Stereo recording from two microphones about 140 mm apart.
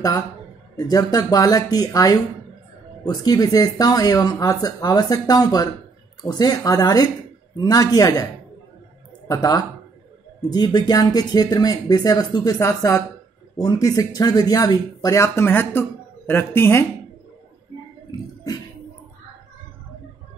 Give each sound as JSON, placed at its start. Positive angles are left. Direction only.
{"t": 0.7, "sound": "speech", "side_deg": 25}
{"t": 9.3, "sound": "speech", "side_deg": 25}